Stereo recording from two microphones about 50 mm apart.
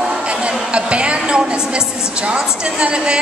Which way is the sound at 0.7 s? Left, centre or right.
Right.